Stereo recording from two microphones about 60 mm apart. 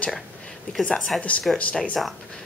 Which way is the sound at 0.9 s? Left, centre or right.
Centre.